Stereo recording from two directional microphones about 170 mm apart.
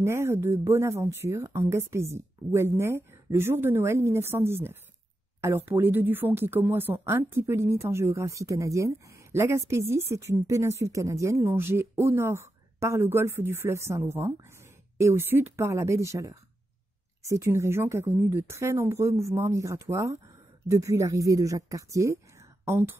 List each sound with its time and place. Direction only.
0.0 s speech: 15° right (ahead or behind)